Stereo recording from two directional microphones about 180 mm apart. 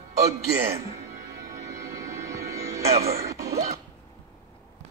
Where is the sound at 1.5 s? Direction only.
20° right (ahead or behind).